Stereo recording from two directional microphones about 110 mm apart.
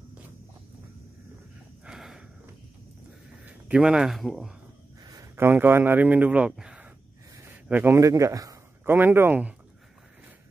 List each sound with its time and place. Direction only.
1.9 s a sound: 5° right (ahead or behind)
3.4 s speech: 10° right (ahead or behind)
5.3 s speech: 20° right (ahead or behind)
8.0 s a man's voice: 30° right (ahead or behind)
8.8 s speech: 20° right (ahead or behind)